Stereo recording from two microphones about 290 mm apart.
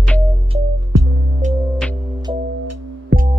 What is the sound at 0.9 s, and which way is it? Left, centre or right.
Music, right.